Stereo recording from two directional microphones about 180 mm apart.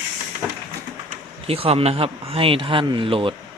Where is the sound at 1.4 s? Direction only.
35° right (ahead or behind).